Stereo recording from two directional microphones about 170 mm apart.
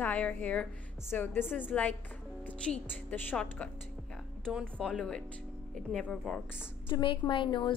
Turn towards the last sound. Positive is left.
turn(degrees=30)  # may be behind; listen again after turning